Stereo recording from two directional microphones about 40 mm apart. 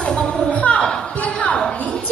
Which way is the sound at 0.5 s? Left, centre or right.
Left.